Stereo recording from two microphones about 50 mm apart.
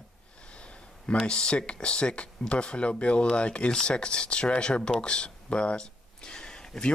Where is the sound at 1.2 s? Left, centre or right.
Centre.